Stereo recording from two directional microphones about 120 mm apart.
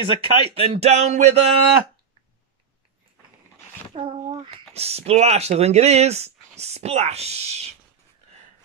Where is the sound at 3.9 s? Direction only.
50° right (ahead or behind).